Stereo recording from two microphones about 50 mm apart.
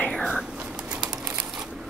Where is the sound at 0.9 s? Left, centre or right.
Centre.